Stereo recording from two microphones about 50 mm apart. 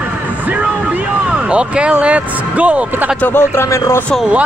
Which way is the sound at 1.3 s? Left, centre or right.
Right.